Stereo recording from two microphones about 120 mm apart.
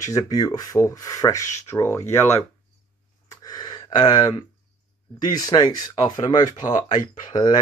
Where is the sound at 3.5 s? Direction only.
35° left (ahead or behind).